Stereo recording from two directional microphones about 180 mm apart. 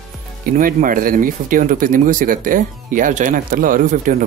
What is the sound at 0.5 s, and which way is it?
Speech, 50° right (ahead or behind).